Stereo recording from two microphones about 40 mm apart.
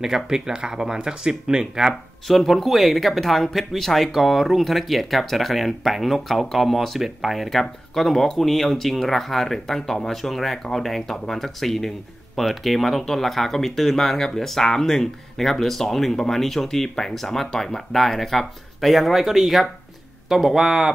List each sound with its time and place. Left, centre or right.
0.0 s speech: centre
2.2 s speech: centre